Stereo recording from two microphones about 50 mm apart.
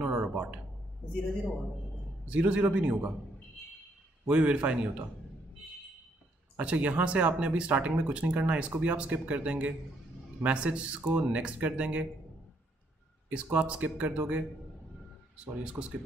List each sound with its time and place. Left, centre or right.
0.0 s a sound: right
2.2 s speech: right
4.3 s speech: right
6.6 s speech: right
13.3 s speech: right